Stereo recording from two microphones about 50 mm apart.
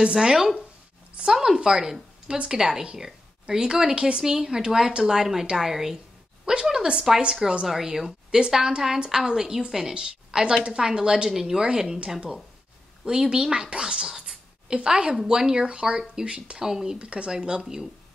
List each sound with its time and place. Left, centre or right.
0.0 s a woman's voice: centre